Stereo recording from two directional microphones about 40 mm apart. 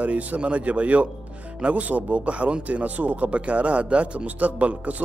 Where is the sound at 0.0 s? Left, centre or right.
Right.